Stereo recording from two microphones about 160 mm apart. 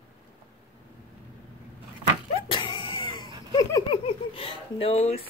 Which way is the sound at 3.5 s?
25° left (ahead or behind).